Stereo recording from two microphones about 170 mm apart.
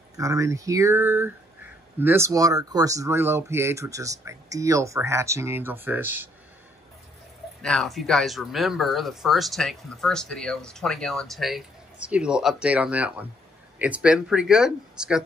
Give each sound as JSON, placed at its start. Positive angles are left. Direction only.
{"t": 0.2, "sound": "speech", "side_deg": -20}
{"t": 7.6, "sound": "speech", "side_deg": 5}